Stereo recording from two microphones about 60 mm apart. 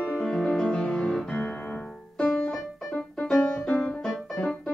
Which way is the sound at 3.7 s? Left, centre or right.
Centre.